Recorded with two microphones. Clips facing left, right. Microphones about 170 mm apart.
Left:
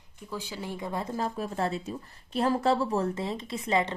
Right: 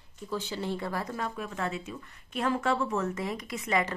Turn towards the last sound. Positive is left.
turn(degrees=30)  # may be behind; listen again after turning